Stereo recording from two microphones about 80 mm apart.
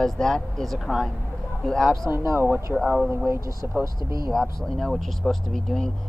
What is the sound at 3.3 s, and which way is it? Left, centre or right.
Speech, right.